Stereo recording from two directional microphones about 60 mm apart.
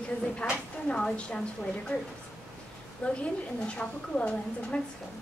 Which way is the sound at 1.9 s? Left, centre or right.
Left.